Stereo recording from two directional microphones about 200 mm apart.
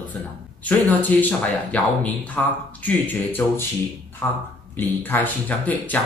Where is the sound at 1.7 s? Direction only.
5° left (ahead or behind).